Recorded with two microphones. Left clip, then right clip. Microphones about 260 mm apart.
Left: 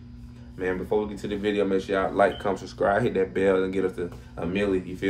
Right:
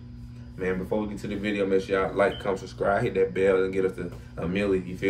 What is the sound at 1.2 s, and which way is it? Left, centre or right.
Speech, centre.